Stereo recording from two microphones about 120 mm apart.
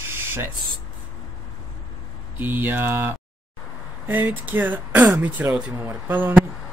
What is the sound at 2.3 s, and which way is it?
Speech, 15° right (ahead or behind).